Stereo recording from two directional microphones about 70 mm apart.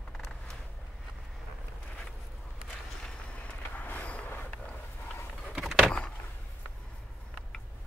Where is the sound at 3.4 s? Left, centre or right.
Left.